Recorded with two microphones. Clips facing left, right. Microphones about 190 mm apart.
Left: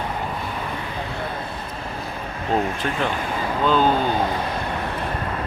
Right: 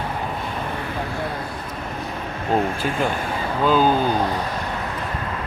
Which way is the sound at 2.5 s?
5° right (ahead or behind).